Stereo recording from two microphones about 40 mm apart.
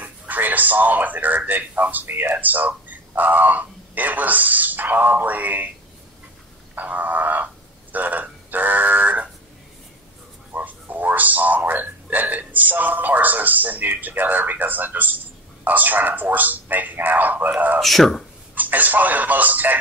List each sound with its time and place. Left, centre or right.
0.0 s speech: right
2.3 s speech: right
6.7 s speech: right
10.5 s speech: right
17.7 s speech: centre
18.5 s speech: right